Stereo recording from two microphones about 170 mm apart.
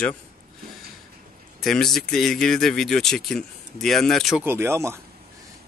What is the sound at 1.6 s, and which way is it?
Speech, centre (ahead or behind).